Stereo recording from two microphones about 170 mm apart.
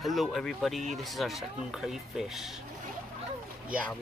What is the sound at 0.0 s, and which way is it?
Speech, centre (ahead or behind).